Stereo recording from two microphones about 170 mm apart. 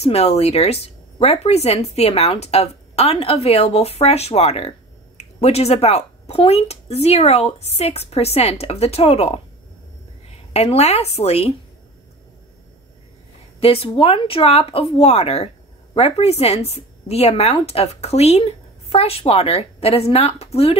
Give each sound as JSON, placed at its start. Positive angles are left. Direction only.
{"t": 0.0, "sound": "speech", "side_deg": 40}
{"t": 10.5, "sound": "speech", "side_deg": 40}
{"t": 13.6, "sound": "speech", "side_deg": 35}